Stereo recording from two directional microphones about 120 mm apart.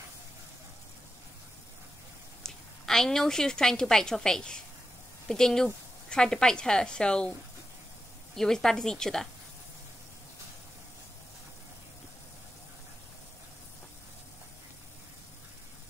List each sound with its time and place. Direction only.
2.4 s a woman's voice: 5° left (ahead or behind)
8.4 s a woman's voice: 5° left (ahead or behind)